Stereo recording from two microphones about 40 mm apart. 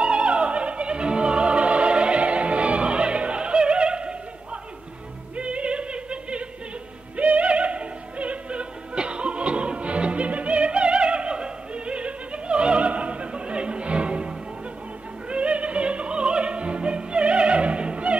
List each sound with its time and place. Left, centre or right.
0.0 s opera: right
5.3 s music: right
7.2 s opera: right